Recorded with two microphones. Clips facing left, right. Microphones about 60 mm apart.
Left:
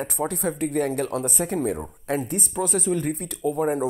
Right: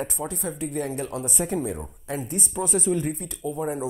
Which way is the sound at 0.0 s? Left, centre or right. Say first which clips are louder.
Left 4 dB; left.